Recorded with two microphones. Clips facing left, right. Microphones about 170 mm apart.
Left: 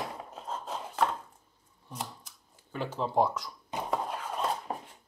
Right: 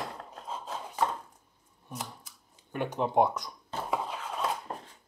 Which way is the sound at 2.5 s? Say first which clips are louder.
Right 3 dB; 15° right (ahead or behind).